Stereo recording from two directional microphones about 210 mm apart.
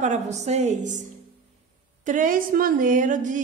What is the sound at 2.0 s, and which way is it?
A woman's voice, 40° right (ahead or behind).